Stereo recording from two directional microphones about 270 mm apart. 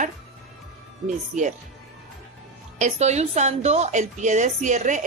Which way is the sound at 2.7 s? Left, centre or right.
Right.